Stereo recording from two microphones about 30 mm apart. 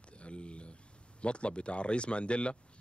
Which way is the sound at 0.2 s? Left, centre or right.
Left.